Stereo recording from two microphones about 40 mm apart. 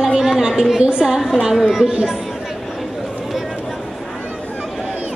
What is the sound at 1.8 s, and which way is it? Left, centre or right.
Speech, right.